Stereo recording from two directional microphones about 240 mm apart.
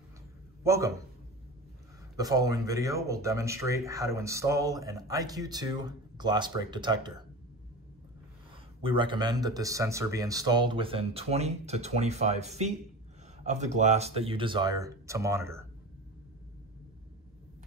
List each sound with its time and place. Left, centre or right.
0.7 s speech: centre
2.1 s speech: centre
8.8 s speech: right